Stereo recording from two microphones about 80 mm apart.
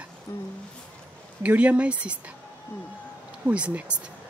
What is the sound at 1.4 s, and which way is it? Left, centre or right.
Speech, centre.